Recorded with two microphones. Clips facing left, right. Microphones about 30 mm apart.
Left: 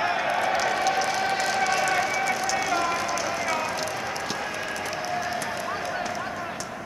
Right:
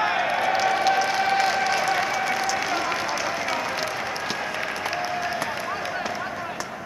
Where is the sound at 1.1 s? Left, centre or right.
Centre.